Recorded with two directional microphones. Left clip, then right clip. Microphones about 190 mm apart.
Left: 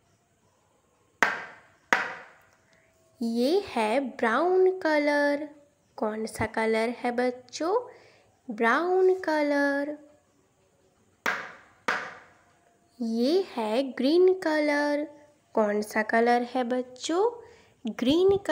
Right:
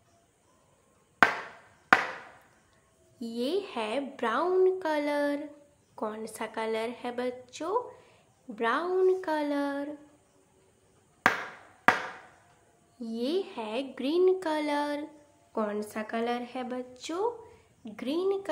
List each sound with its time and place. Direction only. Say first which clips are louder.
3.2 s a woman's voice: left 6 dB; 30° left (ahead or behind)
13.0 s a woman's voice: left 6 dB; 30° left (ahead or behind)